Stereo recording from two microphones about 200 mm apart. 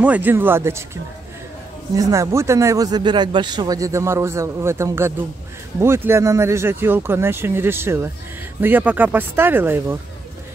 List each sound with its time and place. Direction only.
0.0 s speech: 10° right (ahead or behind)
2.0 s speech: 15° right (ahead or behind)